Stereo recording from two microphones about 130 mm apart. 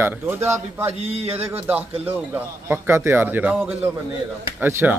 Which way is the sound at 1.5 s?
15° right (ahead or behind).